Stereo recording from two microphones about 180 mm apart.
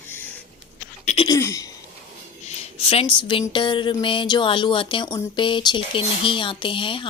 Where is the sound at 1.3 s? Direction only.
20° left (ahead or behind).